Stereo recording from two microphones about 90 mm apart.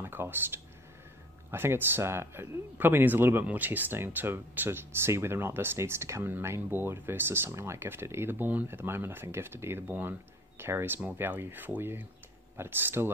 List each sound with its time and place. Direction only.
0.0 s speech: 25° right (ahead or behind)